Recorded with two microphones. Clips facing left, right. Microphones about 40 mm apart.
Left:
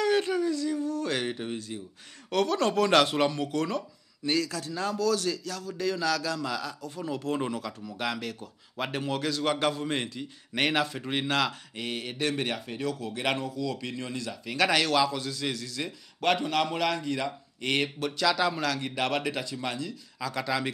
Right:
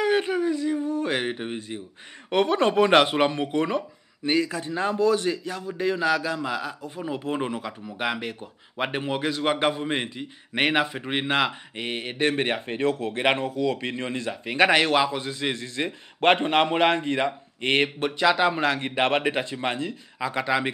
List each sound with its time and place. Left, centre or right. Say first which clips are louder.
0.0 s speech: right 3 dB; right